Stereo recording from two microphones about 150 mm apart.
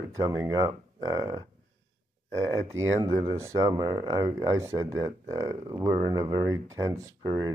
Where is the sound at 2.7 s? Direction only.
20° right (ahead or behind).